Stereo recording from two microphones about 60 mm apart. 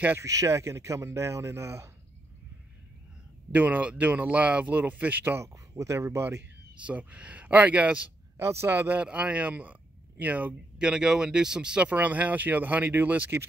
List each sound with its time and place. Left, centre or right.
0.2 s speech: right
3.5 s speech: right
5.4 s speech: right
6.7 s a man's voice: right
8.4 s a man's voice: right
9.0 s speech: right
10.8 s speech: centre; by 13.3 s right